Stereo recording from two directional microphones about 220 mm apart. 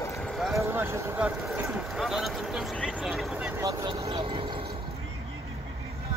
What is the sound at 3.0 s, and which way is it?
Vehicle, centre (ahead or behind).